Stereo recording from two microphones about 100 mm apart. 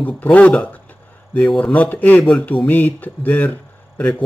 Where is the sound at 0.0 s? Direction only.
15° left (ahead or behind).